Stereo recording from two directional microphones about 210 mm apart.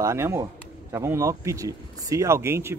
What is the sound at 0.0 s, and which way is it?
Speech, 15° right (ahead or behind).